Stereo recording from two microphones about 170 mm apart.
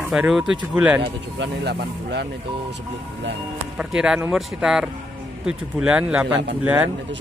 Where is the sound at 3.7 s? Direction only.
5° right (ahead or behind).